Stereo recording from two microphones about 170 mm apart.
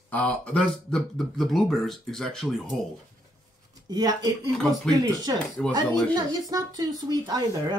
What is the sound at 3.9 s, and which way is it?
Speech, 25° right (ahead or behind).